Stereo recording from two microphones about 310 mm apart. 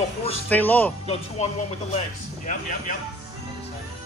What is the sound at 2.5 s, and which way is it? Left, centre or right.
Speech, left.